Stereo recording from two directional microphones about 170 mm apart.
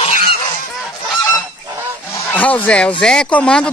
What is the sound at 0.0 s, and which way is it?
Goose, 45° left (ahead or behind).